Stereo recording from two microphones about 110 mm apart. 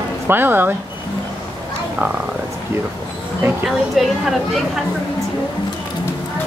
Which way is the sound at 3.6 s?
Centre (ahead or behind).